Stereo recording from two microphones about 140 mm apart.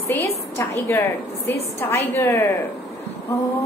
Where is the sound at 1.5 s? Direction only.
15° left (ahead or behind).